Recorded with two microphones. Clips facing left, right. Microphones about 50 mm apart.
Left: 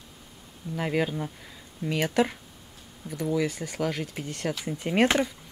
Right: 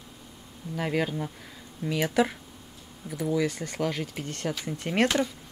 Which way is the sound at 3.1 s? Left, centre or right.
Centre.